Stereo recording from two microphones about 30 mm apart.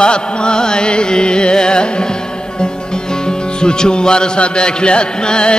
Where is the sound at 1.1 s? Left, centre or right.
Left.